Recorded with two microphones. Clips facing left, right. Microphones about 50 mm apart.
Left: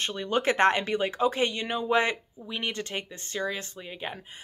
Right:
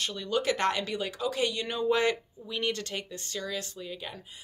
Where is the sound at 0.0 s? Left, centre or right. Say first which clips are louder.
Left 2 dB; left.